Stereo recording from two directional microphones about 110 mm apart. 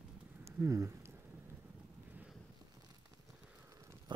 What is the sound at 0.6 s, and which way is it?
Speech, 25° right (ahead or behind).